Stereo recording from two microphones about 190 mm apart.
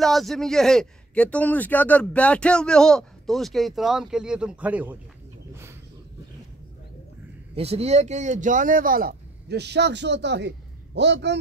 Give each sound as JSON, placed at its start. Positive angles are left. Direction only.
{"t": 0.0, "sound": "speech", "side_deg": 0}
{"t": 7.5, "sound": "a man's voice", "side_deg": -30}